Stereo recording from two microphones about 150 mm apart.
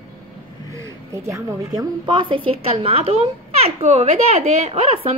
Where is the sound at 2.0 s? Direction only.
35° right (ahead or behind).